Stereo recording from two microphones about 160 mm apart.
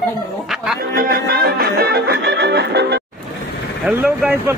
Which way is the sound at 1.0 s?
70° right (ahead or behind).